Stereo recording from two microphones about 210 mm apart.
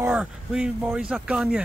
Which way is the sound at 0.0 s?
5° right (ahead or behind).